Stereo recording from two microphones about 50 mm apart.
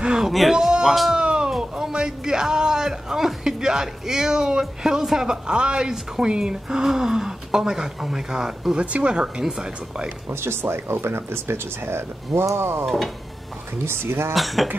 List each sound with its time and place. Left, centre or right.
0.0 s speech: centre
0.3 s speech: centre
1.1 s a sound: centre
1.6 s a man's voice: centre
10.3 s speech: right
12.8 s speech: centre
13.8 s speech: right
14.3 s speech: centre